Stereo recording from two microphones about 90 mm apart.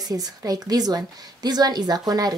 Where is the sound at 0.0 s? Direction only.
45° right (ahead or behind).